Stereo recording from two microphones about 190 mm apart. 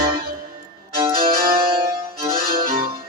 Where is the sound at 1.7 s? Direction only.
25° right (ahead or behind).